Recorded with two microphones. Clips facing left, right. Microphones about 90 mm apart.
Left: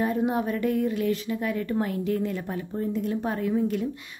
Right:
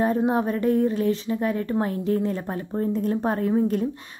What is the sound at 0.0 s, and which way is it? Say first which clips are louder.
Speech: right 3 dB; 35° right (ahead or behind).